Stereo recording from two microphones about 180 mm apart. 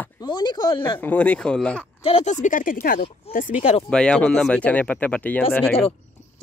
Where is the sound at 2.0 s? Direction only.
35° left (ahead or behind).